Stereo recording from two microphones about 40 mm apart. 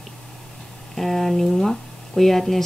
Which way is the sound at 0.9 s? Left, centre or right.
Centre.